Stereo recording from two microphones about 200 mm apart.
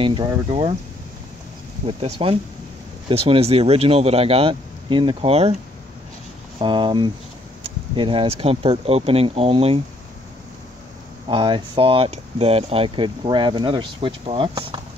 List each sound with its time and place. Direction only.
0.0 s speech: 25° right (ahead or behind)
1.9 s speech: 30° right (ahead or behind)
6.6 s speech: 25° right (ahead or behind)
11.2 s speech: 25° right (ahead or behind)